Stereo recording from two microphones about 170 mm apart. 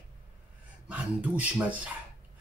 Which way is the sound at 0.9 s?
10° right (ahead or behind).